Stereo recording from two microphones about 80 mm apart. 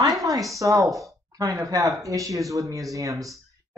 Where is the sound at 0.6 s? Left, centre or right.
Right.